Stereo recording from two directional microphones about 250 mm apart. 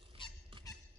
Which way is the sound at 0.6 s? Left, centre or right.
Centre.